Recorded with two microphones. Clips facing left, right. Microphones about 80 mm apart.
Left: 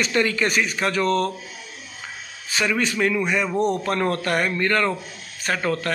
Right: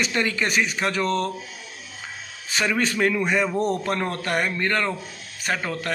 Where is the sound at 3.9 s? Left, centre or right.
Right.